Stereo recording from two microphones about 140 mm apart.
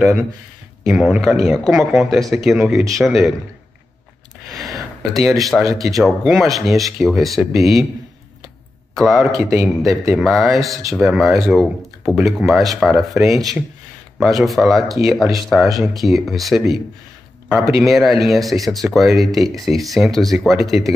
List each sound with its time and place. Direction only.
0.8 s speech: 5° right (ahead or behind)
4.5 s speech: centre (ahead or behind)
8.9 s speech: centre (ahead or behind)